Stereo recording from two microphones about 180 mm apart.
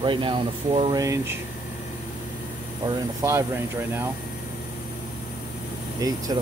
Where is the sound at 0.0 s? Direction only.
25° right (ahead or behind).